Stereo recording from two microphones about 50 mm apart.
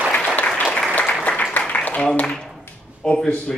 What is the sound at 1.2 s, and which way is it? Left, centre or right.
Applause, left.